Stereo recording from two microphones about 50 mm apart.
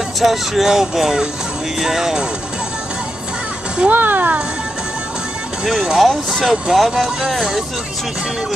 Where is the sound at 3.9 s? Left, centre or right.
Right.